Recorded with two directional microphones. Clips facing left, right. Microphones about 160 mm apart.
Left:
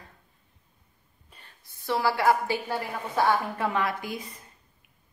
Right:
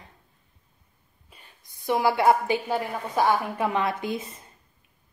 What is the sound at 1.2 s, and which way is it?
A woman's voice, 10° right (ahead or behind).